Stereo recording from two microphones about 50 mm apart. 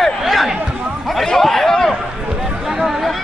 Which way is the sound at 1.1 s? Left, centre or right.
Centre.